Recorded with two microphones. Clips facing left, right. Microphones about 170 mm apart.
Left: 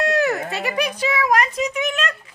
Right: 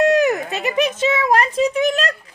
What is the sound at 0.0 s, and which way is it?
A child's voice, 20° right (ahead or behind).